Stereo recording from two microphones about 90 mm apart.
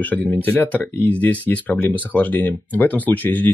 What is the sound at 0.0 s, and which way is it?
Speech, 20° left (ahead or behind).